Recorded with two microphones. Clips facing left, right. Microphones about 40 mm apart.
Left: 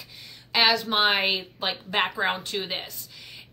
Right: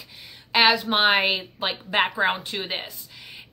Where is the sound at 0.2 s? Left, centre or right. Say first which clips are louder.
Right 3 dB; centre.